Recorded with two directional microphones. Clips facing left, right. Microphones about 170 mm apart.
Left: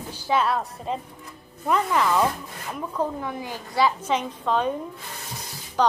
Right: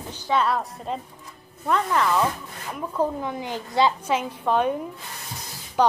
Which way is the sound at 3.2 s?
20° right (ahead or behind).